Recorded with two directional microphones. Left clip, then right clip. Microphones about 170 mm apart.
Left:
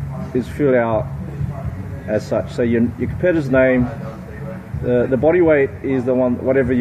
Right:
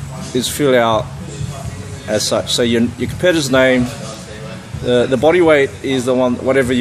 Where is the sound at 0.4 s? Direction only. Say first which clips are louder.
Right 3 dB; 25° right (ahead or behind).